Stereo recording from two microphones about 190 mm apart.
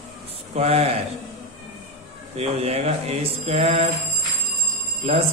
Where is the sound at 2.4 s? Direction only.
35° right (ahead or behind).